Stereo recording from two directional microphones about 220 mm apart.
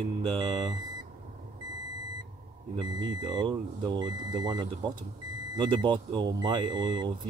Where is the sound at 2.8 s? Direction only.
20° right (ahead or behind).